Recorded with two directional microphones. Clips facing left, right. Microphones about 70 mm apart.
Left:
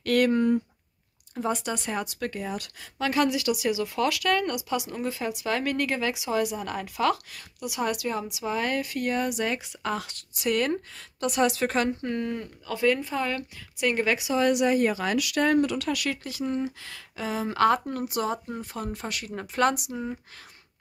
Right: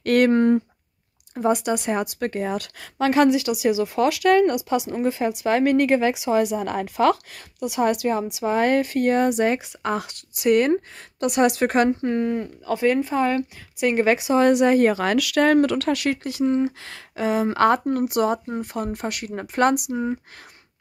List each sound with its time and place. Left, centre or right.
0.0 s speech: right
1.5 s speech: centre
1.9 s a woman's voice: right
2.5 s speech: right
3.0 s a woman's voice: right
3.3 s a woman's voice: right
9.9 s a woman's voice: centre; by 11.9 s right
12.0 s a woman's voice: right
14.0 s speech: right
15.9 s speech: right
16.8 s speech: right
17.5 s a woman's voice: right
18.0 s speech: right
19.6 s a woman's voice: right